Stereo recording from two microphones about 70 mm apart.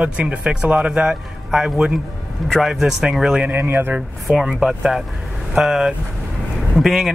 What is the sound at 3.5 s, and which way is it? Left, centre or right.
Speech, right.